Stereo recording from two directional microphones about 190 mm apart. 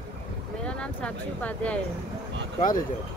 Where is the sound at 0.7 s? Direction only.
5° left (ahead or behind).